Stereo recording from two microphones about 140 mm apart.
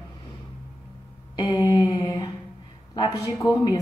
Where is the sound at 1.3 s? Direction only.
25° left (ahead or behind).